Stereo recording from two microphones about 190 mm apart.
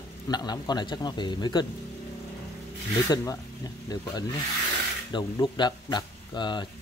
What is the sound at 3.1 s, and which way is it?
Speech, 20° left (ahead or behind).